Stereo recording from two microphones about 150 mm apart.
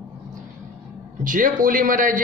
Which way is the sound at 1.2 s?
60° right (ahead or behind).